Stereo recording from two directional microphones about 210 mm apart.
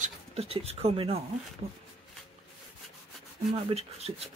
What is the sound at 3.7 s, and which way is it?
Speech, 30° right (ahead or behind).